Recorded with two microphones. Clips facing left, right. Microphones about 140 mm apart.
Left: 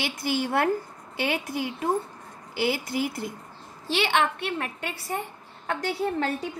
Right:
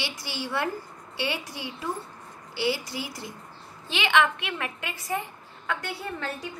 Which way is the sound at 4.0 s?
40° left (ahead or behind).